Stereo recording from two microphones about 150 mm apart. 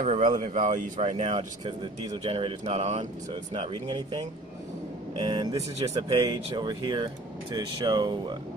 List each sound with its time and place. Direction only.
0.0 s speech: 55° right (ahead or behind)
3.5 s speech: 35° right (ahead or behind)